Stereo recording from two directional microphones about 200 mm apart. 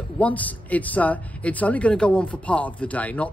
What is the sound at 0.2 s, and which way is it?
Speech, 10° left (ahead or behind).